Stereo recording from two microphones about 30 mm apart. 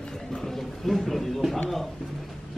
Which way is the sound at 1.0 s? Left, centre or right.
Centre.